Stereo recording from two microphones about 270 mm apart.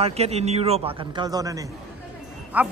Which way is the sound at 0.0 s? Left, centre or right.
Right.